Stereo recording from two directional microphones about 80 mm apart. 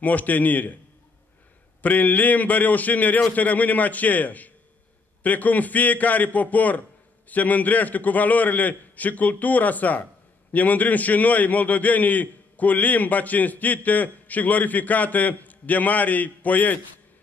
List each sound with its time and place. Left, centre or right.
0.0 s a man's voice: left
1.8 s a man's voice: left